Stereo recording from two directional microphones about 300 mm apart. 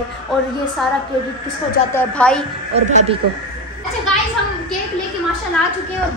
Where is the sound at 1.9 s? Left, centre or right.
Centre.